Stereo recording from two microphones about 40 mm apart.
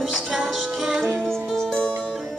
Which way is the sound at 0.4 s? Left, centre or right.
Centre.